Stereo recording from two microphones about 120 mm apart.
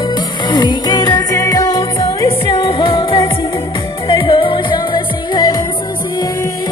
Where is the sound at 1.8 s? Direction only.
40° left (ahead or behind).